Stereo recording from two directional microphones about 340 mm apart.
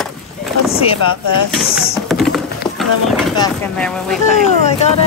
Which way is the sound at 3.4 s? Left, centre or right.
Centre.